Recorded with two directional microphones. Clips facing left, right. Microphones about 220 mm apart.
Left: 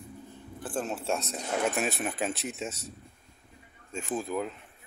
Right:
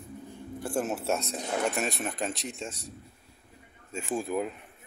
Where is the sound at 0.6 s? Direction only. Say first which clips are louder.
Right 3 dB; 10° right (ahead or behind).